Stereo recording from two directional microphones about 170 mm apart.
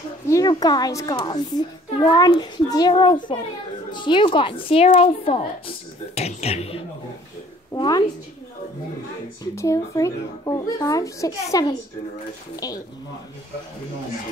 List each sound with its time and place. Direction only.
0.3 s a woman's voice: 20° left (ahead or behind); by 6.8 s 35° left (ahead or behind)
7.7 s a woman's voice: 25° left (ahead or behind)
9.6 s a woman's voice: 15° left (ahead or behind)